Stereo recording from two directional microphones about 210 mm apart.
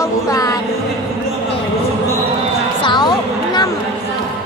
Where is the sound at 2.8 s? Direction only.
20° left (ahead or behind).